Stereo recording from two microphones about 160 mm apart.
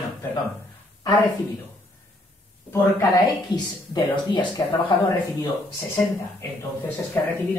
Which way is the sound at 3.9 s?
30° left (ahead or behind).